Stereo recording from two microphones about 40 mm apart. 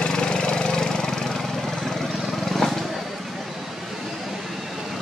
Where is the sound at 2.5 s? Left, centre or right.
Centre.